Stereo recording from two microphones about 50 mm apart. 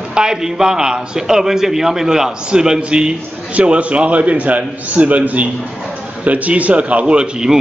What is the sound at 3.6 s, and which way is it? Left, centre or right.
A man's voice, right.